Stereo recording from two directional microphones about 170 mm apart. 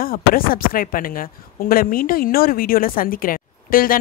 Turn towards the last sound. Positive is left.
turn(degrees=55)  # may be behind; listen again after turning